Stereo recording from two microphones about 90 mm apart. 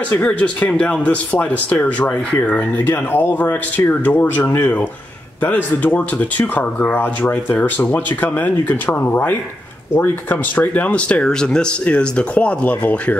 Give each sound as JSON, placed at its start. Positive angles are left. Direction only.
{"t": 0.1, "sound": "speech", "side_deg": 15}